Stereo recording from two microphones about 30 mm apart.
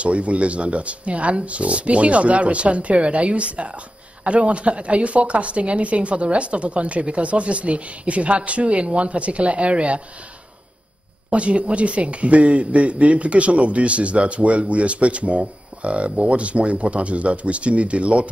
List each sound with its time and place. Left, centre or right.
0.0 s speech: right
11.2 s speech: right